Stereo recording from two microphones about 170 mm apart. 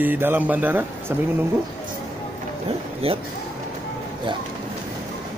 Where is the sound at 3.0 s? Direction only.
35° right (ahead or behind).